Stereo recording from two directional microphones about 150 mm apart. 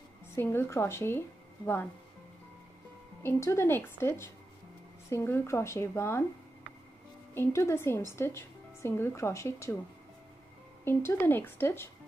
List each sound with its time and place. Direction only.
0.4 s a woman's voice: 15° left (ahead or behind)
3.2 s a woman's voice: 20° left (ahead or behind)
7.3 s a woman's voice: 15° left (ahead or behind)
10.8 s a woman's voice: 15° left (ahead or behind)